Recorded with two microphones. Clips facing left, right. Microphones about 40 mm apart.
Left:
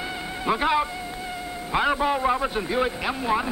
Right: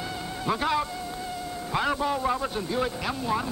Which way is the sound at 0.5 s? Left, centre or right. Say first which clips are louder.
Left 4 dB; left.